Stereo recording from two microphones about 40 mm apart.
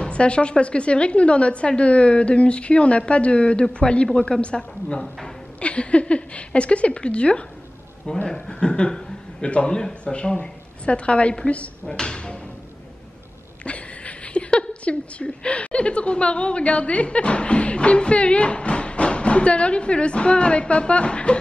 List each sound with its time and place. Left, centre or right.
0.0 s a woman's voice: left
11.8 s a woman's voice: centre
13.7 s a woman's voice: left